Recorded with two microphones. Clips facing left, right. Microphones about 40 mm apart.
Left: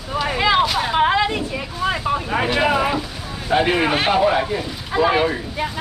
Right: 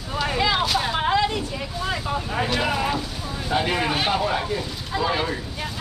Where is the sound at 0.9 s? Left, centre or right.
Left.